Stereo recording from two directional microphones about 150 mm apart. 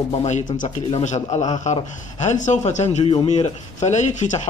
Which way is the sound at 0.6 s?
55° left (ahead or behind).